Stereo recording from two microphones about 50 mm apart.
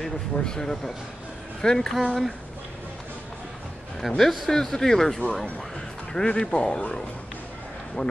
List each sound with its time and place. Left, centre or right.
0.0 s speech: centre
4.2 s speech: centre
8.0 s speech: left